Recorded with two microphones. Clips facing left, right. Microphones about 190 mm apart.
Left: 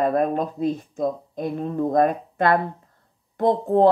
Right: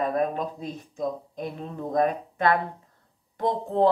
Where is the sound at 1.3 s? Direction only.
45° left (ahead or behind).